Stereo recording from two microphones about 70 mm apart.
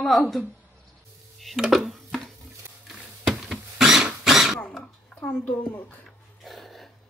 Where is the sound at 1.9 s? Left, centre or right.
Centre.